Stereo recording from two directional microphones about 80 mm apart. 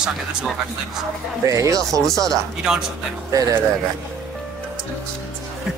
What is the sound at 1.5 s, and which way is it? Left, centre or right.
Speech, right.